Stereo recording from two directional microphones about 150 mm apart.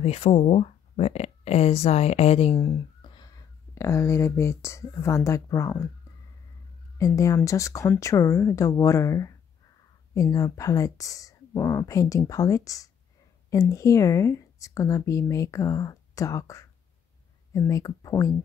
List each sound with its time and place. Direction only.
0.0 s speech: 40° left (ahead or behind)
2.5 s a sound: 30° left (ahead or behind)
3.7 s speech: 20° left (ahead or behind)
7.0 s speech: 20° left (ahead or behind)